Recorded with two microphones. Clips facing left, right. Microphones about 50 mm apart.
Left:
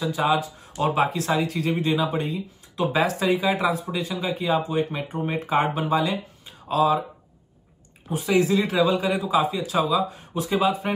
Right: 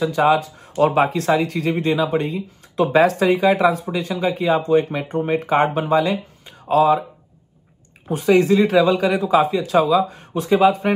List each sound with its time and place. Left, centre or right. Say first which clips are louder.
0.0 s a man's voice: right 6 dB; right
8.1 s a man's voice: right 6 dB; right